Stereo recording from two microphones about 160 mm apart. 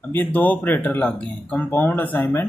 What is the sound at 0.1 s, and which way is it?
Speech, 10° left (ahead or behind).